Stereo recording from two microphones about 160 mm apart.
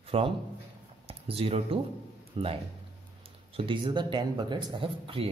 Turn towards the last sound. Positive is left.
turn(degrees=-30)  # may be behind; listen again after turning